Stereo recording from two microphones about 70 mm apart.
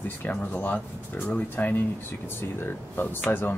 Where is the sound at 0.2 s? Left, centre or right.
Left.